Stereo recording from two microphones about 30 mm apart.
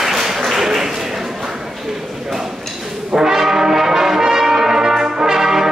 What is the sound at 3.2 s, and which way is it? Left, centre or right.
Brass instrument, centre.